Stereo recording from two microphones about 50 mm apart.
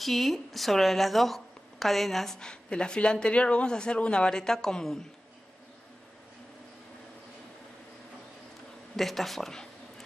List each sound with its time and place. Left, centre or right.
0.0 s a woman's voice: centre
2.4 s speech: centre
8.9 s a woman's voice: centre